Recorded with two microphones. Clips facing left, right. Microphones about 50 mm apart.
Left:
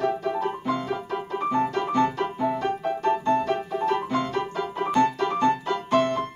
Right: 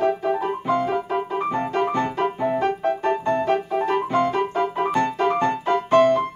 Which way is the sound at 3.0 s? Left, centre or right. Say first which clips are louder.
Left 2 dB; right.